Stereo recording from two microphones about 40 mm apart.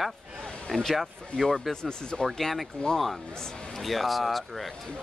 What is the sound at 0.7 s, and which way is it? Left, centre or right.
Speech, centre.